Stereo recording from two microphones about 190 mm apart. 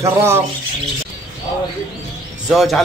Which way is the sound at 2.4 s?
Centre (ahead or behind).